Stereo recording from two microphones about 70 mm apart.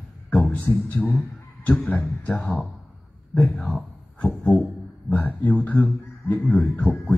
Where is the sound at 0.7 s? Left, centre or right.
Left.